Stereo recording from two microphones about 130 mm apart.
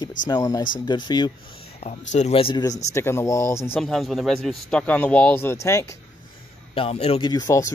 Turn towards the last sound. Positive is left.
turn(degrees=25)  # may be behind; listen again after turning